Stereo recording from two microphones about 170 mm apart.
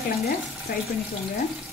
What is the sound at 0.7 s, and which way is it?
Speech, 65° left (ahead or behind).